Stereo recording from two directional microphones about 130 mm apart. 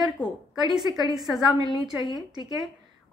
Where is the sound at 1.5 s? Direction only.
30° right (ahead or behind).